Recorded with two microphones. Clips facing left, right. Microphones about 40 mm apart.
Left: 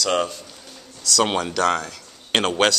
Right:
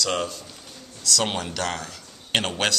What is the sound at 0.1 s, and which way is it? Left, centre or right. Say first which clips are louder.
Speech: left 5 dB; left.